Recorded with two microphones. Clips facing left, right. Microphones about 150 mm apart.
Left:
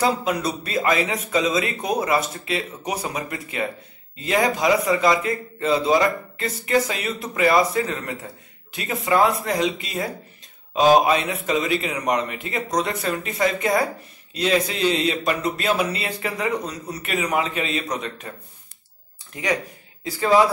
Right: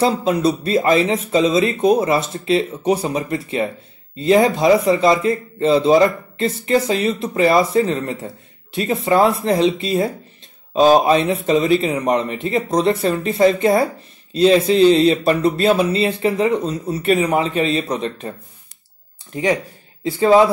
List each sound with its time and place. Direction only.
0.0 s a man's voice: 25° right (ahead or behind)
20.0 s speech: 25° right (ahead or behind)